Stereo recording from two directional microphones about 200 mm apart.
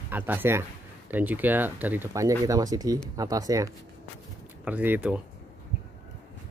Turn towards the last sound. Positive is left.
turn(degrees=-5)  # may be behind; listen again after turning